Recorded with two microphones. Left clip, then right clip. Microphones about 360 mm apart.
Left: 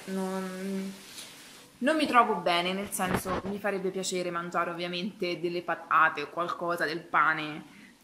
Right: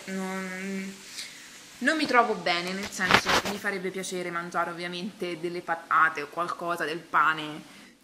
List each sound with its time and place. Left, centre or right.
0.1 s a woman's voice: centre
1.9 s a woman's voice: centre
3.1 s speech: right
3.6 s a woman's voice: centre